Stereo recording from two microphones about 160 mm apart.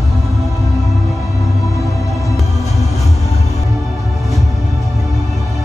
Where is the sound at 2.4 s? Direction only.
Centre (ahead or behind).